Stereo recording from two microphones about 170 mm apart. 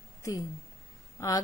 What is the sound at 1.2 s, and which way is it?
Speech, 20° left (ahead or behind).